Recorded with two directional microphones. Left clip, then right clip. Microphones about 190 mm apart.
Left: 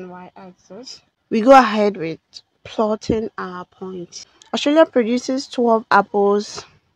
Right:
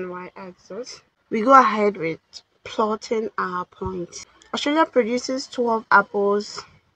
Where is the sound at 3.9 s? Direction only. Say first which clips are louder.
Right 1 dB; 50° left (ahead or behind).